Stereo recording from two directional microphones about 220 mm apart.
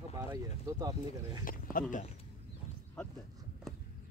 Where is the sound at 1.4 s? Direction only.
40° left (ahead or behind).